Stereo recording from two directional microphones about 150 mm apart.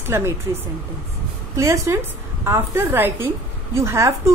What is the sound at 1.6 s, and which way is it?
A woman's voice, 20° right (ahead or behind).